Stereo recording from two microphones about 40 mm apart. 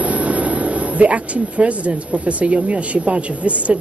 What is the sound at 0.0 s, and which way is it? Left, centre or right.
Speech, right.